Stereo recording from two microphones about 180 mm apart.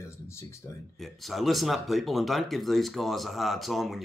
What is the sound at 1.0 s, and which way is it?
Speech, centre (ahead or behind).